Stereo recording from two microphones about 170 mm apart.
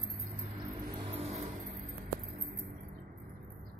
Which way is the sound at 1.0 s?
35° right (ahead or behind).